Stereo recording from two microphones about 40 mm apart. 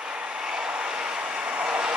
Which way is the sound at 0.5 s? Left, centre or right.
Centre.